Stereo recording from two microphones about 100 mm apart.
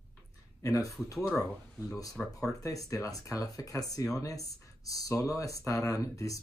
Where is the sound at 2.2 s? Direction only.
10° left (ahead or behind).